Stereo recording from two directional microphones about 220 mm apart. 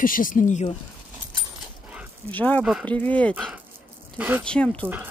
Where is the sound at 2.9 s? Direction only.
5° left (ahead or behind); by 4.5 s 10° right (ahead or behind).